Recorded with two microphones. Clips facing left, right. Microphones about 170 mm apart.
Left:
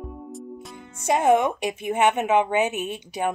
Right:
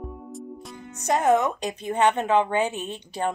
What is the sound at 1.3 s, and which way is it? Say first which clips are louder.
Speech: left 1 dB; 15° left (ahead or behind).